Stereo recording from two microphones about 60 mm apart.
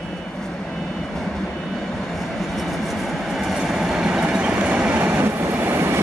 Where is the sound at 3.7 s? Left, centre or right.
Centre.